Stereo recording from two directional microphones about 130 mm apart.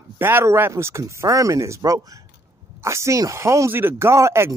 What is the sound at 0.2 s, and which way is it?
Speech, 20° right (ahead or behind).